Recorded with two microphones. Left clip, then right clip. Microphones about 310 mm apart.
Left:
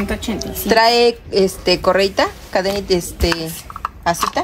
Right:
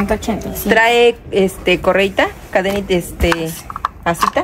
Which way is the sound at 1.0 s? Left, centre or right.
Centre.